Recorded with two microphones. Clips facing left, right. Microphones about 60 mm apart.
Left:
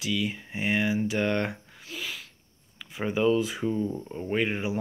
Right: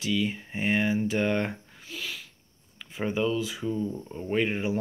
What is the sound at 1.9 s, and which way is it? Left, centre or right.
Sneeze, centre.